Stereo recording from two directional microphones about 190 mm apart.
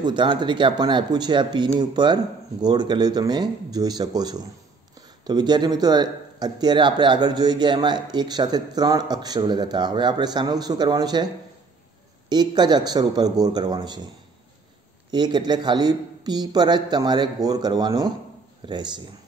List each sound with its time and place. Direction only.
0.0 s speech: 25° right (ahead or behind)
12.3 s speech: 20° right (ahead or behind)
15.0 s speech: 20° right (ahead or behind)